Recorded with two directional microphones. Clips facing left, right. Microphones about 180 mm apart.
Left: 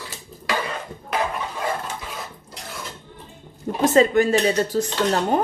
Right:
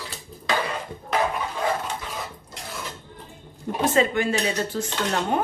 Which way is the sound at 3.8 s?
40° left (ahead or behind).